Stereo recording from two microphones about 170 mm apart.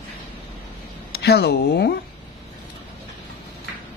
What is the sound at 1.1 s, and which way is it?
Speech, 70° left (ahead or behind).